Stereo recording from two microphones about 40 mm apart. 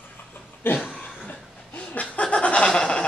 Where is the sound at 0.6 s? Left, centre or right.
Left.